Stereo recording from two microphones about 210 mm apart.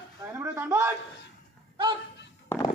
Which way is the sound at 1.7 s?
20° right (ahead or behind).